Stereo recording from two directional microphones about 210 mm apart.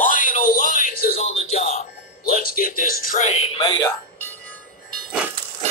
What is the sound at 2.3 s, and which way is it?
Speech, 45° left (ahead or behind).